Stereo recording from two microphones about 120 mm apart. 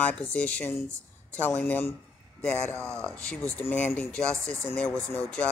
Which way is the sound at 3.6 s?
15° left (ahead or behind).